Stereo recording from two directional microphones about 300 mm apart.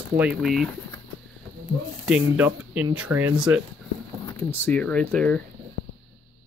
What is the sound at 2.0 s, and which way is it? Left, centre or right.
Speech, centre.